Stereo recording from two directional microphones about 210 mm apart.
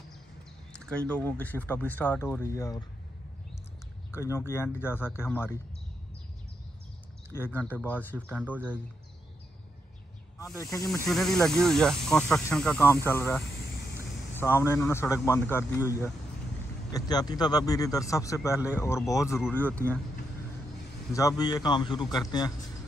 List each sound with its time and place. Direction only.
0.7 s speech: 5° left (ahead or behind)
4.1 s speech: 10° left (ahead or behind)
7.3 s speech: 10° left (ahead or behind)
8.5 s speech: 5° right (ahead or behind)
10.4 s speech: 15° left (ahead or behind)
10.9 s speech: centre (ahead or behind)
16.9 s speech: 20° left (ahead or behind)
21.1 s a man's voice: 15° left (ahead or behind)